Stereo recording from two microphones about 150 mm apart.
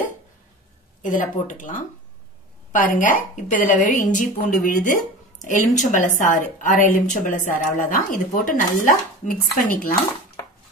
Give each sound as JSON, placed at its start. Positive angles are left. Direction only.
{"t": 1.0, "sound": "a woman's voice", "side_deg": 60}